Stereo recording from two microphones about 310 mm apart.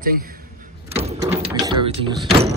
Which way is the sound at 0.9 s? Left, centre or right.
Centre.